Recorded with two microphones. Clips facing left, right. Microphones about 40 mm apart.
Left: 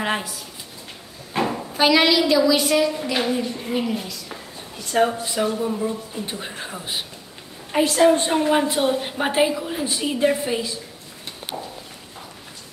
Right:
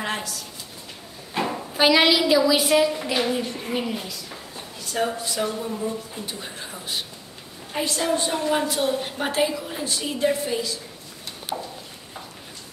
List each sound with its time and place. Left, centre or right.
0.0 s speech: centre
1.3 s a sound: centre
1.7 s a woman's voice: centre
4.9 s a woman's voice: left
7.7 s a woman's voice: left
8.1 s a woman's voice: left
11.5 s a sound: left